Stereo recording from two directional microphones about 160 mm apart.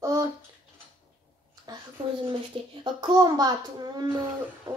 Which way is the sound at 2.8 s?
25° right (ahead or behind).